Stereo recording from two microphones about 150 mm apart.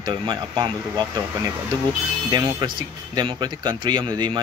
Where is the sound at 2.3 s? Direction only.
25° right (ahead or behind).